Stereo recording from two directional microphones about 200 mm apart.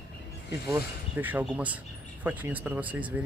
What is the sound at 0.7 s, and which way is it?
Speech, 10° right (ahead or behind).